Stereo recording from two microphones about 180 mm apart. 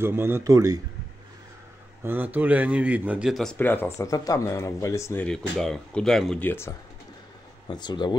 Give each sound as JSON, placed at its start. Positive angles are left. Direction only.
{"t": 0.0, "sound": "speech", "side_deg": -10}
{"t": 2.0, "sound": "speech", "side_deg": -10}
{"t": 3.5, "sound": "speech", "side_deg": 10}
{"t": 7.6, "sound": "speech", "side_deg": 25}